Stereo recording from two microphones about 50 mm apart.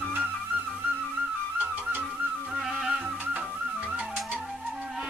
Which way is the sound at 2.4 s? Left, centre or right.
Centre.